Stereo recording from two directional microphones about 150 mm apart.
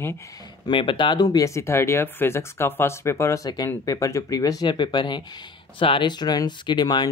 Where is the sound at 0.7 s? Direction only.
35° left (ahead or behind).